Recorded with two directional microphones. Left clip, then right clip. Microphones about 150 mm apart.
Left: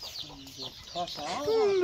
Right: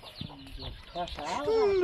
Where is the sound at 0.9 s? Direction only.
Centre (ahead or behind).